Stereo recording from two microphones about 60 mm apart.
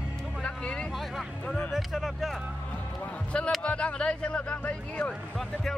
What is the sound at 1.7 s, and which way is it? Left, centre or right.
Speech, centre.